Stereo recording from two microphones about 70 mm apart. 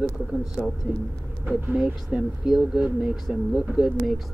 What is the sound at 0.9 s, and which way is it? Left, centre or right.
Speech, centre.